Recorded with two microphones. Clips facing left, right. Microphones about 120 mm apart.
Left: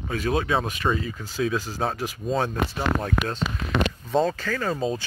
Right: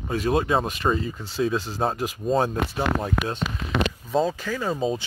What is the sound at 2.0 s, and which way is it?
Speech, centre (ahead or behind).